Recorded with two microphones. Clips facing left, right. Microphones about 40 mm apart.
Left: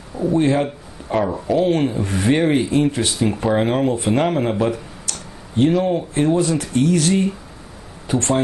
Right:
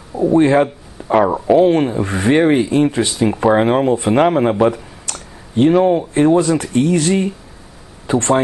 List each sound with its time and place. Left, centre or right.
0.1 s a man's voice: centre
4.6 s a sound: right
6.1 s speech: right